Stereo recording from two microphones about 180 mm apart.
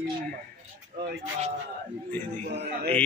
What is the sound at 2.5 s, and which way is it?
Speech, 65° right (ahead or behind).